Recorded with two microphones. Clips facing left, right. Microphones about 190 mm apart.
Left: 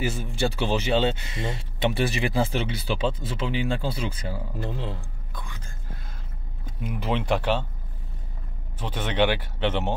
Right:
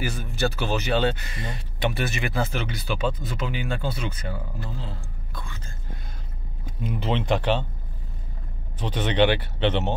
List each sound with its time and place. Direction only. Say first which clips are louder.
0.0 s speech: left 1 dB; 25° left (ahead or behind)
4.6 s speech: left 4 dB; 70° left (ahead or behind)
5.3 s speech: right 1 dB; 15° left (ahead or behind)
6.8 s speech: right 1 dB; 10° left (ahead or behind)
8.7 s speech: right 3 dB; 10° left (ahead or behind)